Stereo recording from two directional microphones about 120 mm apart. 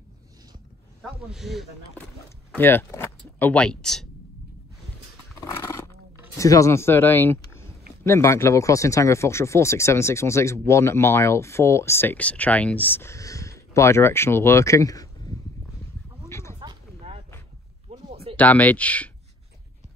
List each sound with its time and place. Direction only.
1.2 s speech: 5° right (ahead or behind)
2.5 s speech: 15° left (ahead or behind)
5.4 s horse: 25° left (ahead or behind)
6.3 s speech: 25° left (ahead or behind)
16.3 s a sound: 20° left (ahead or behind)
18.3 s speech: 15° left (ahead or behind)